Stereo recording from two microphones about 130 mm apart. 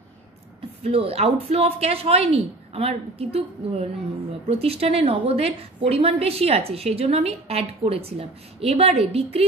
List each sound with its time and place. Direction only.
0.8 s a woman's voice: 50° right (ahead or behind)